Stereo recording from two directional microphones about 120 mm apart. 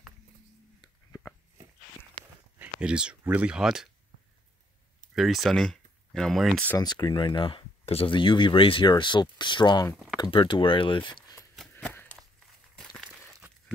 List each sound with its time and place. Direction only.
2.6 s speech: 10° right (ahead or behind)
5.1 s speech: centre (ahead or behind)
6.8 s speech: 35° left (ahead or behind)
11.1 s a sound: 40° left (ahead or behind)
11.7 s walk: 15° left (ahead or behind)